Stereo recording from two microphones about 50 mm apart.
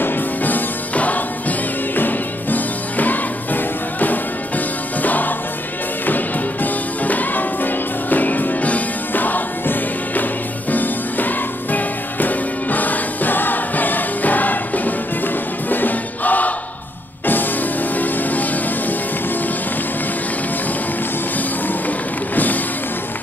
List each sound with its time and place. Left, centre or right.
0.0 s music: left
21.6 s music: left